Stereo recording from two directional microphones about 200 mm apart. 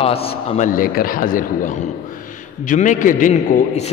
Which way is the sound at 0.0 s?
30° left (ahead or behind).